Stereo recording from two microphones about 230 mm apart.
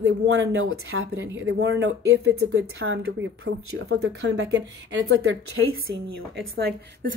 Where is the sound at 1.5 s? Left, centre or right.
Right.